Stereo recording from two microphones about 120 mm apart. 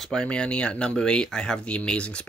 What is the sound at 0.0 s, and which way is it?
Speech, 5° left (ahead or behind).